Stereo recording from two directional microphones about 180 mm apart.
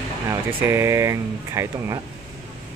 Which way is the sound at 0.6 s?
15° right (ahead or behind).